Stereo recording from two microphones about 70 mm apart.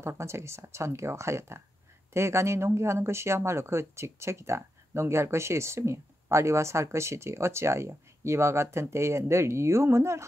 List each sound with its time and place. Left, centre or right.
0.2 s speech: right